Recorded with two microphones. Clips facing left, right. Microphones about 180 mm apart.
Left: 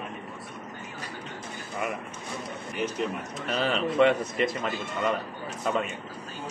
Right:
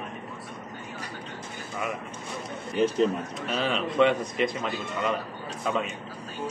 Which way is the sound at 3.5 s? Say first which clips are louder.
Left 1 dB; centre (ahead or behind).